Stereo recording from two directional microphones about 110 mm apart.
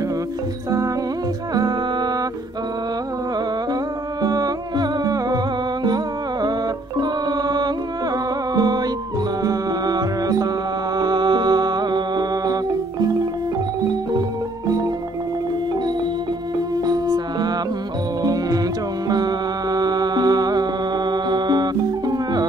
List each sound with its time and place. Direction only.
1.5 s music: 35° right (ahead or behind)
4.2 s music: 35° right (ahead or behind)
7.0 s music: 40° right (ahead or behind)
16.7 s music: 35° right (ahead or behind)